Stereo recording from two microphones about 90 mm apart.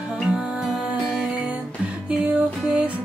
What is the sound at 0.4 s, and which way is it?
Music, centre (ahead or behind).